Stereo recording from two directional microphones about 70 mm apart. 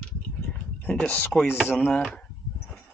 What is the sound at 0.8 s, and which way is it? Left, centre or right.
Speech, centre.